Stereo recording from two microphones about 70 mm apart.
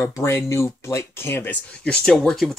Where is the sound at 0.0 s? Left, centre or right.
Left.